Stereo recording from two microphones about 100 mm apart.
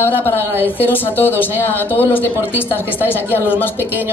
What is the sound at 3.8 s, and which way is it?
Speech, 20° right (ahead or behind).